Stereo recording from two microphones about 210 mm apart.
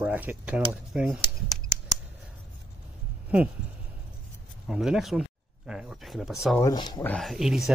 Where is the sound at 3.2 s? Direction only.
5° right (ahead or behind).